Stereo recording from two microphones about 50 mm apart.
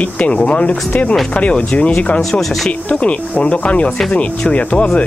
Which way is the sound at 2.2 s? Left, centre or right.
Centre.